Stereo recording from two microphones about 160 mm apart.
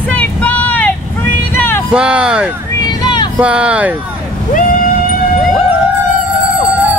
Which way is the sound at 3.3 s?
5° right (ahead or behind).